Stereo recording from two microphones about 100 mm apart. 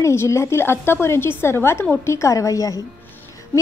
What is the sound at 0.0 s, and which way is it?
A woman's voice, 25° left (ahead or behind).